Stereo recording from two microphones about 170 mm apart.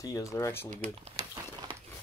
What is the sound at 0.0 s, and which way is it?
Speech, 20° left (ahead or behind).